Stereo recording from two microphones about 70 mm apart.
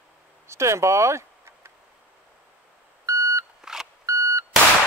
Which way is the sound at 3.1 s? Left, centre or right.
Right.